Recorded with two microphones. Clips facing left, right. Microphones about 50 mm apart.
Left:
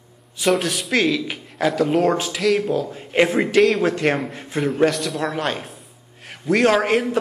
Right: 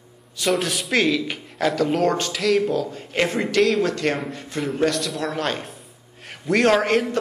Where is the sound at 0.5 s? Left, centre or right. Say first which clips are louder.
Left 2 dB; centre.